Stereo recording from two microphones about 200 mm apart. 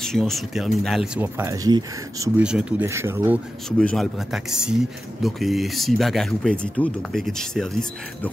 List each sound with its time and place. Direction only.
0.0 s speech: centre (ahead or behind)
3.7 s speech: centre (ahead or behind)